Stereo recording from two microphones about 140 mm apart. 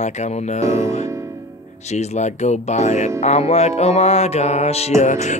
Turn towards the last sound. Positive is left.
turn(degrees=60)  # may be behind; listen again after turning